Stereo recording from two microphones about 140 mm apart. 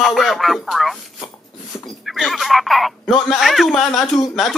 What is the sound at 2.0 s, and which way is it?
Speech, centre (ahead or behind).